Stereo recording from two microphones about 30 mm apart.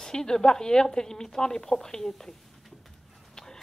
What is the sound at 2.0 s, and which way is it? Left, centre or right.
Speech, centre.